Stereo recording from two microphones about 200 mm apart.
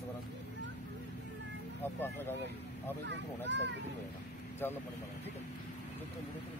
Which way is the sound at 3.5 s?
60° right (ahead or behind).